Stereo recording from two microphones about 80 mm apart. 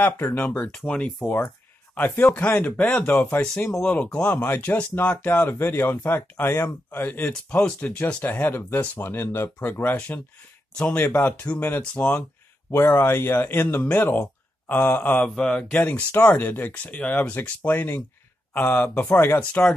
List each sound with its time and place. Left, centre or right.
0.0 s speech: left
0.7 s speech: centre
2.0 s speech: left
3.8 s speech: centre
15.2 s speech: centre
15.8 s speech: left